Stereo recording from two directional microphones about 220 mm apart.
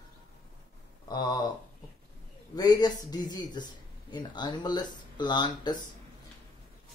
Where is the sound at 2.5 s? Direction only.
20° left (ahead or behind).